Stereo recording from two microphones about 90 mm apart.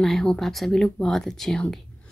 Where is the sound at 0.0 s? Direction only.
5° left (ahead or behind).